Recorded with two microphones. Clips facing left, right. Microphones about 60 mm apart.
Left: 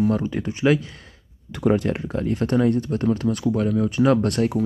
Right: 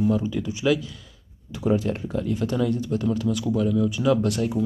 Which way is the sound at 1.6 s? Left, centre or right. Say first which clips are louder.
Left 3 dB; left.